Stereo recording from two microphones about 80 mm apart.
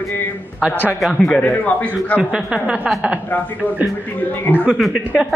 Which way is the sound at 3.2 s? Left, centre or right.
Left.